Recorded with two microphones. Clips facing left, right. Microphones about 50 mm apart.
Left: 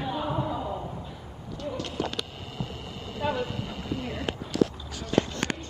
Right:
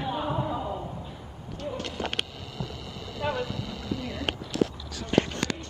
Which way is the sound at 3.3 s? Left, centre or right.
Left.